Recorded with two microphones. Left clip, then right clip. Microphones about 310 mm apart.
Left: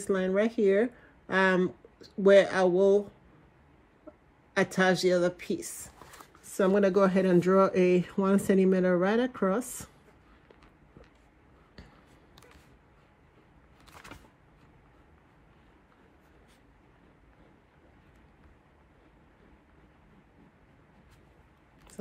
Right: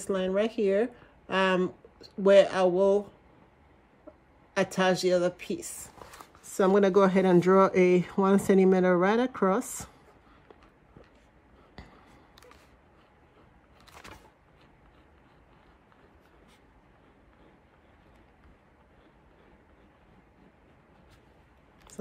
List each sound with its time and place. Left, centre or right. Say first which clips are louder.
0.4 s speech: even; right
0.7 s speech: left 1 dB; centre
1.3 s speech: even; right
4.6 s speech: even; right
6.5 s speech: right 2 dB; right